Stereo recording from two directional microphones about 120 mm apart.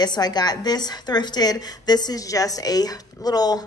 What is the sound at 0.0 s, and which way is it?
A woman's voice, 35° left (ahead or behind).